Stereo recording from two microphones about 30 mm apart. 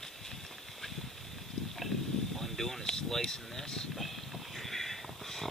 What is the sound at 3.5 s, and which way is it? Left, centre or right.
Speech, centre.